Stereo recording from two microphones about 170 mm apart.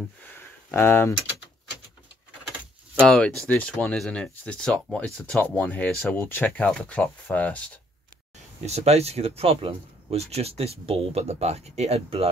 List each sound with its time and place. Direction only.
0.2 s a sound: 10° left (ahead or behind)
3.0 s speech: 5° left (ahead or behind)
8.6 s speech: 40° right (ahead or behind)